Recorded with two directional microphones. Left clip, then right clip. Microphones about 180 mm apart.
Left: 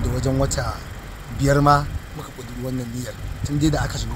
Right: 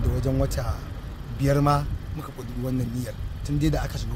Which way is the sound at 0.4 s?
10° right (ahead or behind).